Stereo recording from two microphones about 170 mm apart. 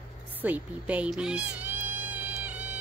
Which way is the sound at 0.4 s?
10° right (ahead or behind).